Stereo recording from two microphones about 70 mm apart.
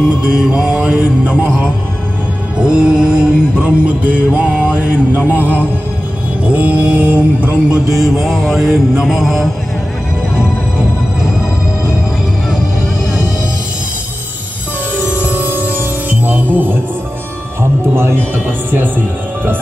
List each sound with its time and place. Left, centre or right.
0.2 s music: centre
5.4 s mantra: right
7.9 s mantra: centre
15.0 s music: right
18.3 s mantra: right